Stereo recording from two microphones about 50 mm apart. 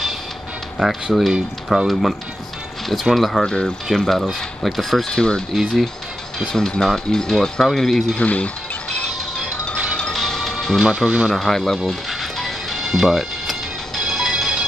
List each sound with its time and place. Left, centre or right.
0.8 s speech: centre
1.3 s speech: centre
1.9 s speech: centre
3.2 s speech: centre
5.1 s speech: centre
5.5 s speech: centre
6.5 s speech: centre
8.2 s speech: left
10.1 s music: centre
10.9 s speech: centre
11.3 s speech: centre
11.9 s music: centre